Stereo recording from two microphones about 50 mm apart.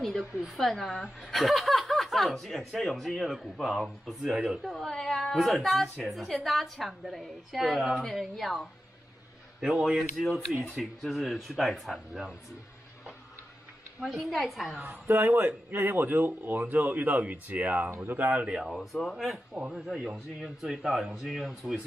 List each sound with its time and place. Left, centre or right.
0.0 s a woman's voice: centre
12.1 s speech: centre
14.3 s speech: centre
15.0 s a man's voice: right
17.9 s a man's voice: right
18.9 s speech: centre
19.7 s speech: centre